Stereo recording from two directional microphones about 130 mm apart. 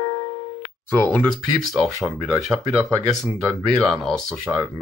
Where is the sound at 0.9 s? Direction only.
10° left (ahead or behind).